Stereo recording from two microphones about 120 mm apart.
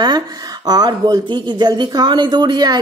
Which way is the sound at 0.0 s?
35° right (ahead or behind).